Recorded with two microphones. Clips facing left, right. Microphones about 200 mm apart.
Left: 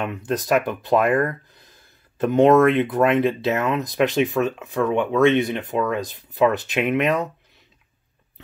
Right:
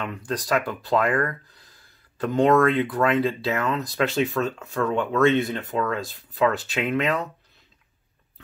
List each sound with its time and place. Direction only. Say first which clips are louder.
0.0 s speech: left 4 dB; 25° left (ahead or behind)